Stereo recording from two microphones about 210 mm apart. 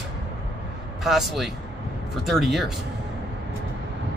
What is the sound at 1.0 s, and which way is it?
Speech, centre (ahead or behind).